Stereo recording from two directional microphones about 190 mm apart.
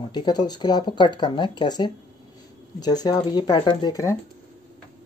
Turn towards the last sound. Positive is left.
turn(degrees=20)  # may be behind; listen again after turning